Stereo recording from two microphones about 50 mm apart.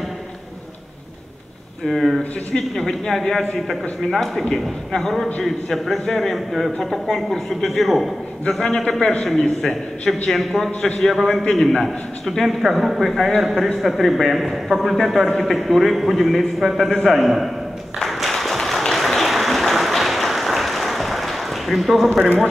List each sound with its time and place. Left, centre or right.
1.9 s a man's voice: centre
2.5 s a woman's voice: centre
10.3 s a man's voice: centre
17.9 s applause: centre